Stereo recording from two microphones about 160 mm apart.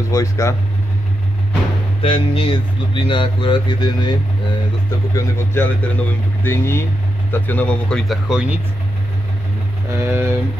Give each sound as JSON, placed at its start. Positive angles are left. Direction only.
{"t": 0.1, "sound": "speech", "side_deg": 20}
{"t": 2.0, "sound": "speech", "side_deg": 35}
{"t": 5.1, "sound": "speech", "side_deg": 15}
{"t": 9.9, "sound": "speech", "side_deg": -15}